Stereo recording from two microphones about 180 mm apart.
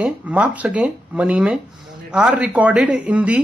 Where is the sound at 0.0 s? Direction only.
10° right (ahead or behind).